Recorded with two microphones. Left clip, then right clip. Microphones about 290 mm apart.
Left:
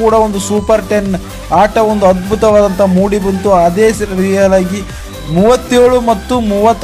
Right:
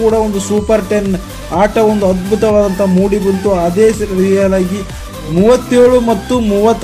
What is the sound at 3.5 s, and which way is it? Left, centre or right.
Speech, centre.